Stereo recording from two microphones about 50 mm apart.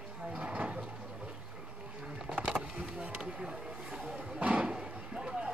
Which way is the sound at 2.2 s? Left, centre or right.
Centre.